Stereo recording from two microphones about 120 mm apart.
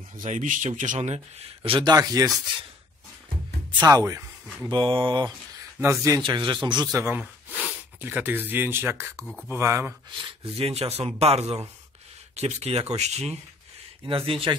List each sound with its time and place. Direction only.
0.2 s speech: 90° right; by 1.2 s 70° right (ahead or behind)
1.6 s speech: 50° right (ahead or behind)
1.9 s speech: 30° right (ahead or behind)
3.8 s speech: 30° right (ahead or behind)
4.6 s speech: 40° right (ahead or behind)
5.8 s speech: 25° right (ahead or behind)
6.2 s speech: 40° right (ahead or behind)
7.0 s speech: 20° right (ahead or behind)
9.2 s speech: 10° left (ahead or behind)
9.5 s speech: 20° right (ahead or behind)
10.2 s speech: 55° right (ahead or behind)
14.0 s speech: 50° right (ahead or behind)